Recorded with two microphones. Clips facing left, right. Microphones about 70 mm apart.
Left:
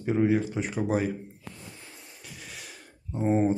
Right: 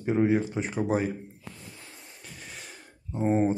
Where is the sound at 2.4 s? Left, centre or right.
Centre.